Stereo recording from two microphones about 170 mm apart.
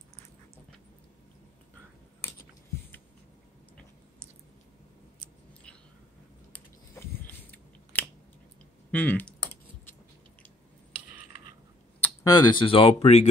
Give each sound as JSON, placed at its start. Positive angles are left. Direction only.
{"t": 7.0, "sound": "scissors", "side_deg": 10}
{"t": 8.9, "sound": "typing", "side_deg": 10}
{"t": 12.0, "sound": "speech", "side_deg": 20}